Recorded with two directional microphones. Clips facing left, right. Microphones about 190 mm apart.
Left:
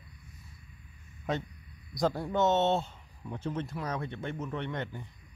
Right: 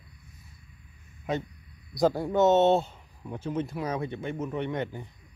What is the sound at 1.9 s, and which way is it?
Speech, 5° right (ahead or behind).